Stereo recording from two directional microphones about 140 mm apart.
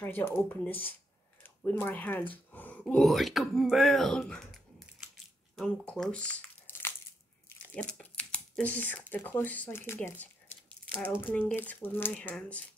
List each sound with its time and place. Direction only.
0.0 s speech: 15° left (ahead or behind)
2.3 s a sound: 10° left (ahead or behind)
9.1 s speech: 15° left (ahead or behind)
10.2 s squish: 10° left (ahead or behind)
11.0 s speech: 15° left (ahead or behind)